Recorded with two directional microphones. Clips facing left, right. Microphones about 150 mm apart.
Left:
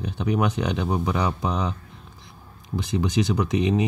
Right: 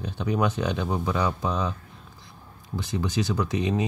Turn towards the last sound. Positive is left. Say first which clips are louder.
# left 3 dB
turn(degrees=20)  # may be behind; listen again after turning